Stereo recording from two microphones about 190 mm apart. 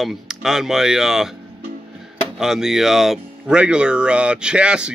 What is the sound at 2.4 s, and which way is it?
Speech, centre (ahead or behind).